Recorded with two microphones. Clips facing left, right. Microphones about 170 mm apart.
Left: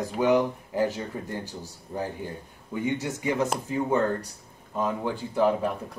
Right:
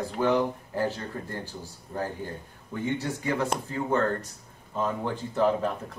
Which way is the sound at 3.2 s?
15° left (ahead or behind).